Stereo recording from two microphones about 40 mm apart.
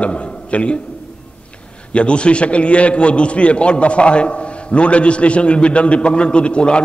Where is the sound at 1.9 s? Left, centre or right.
Left.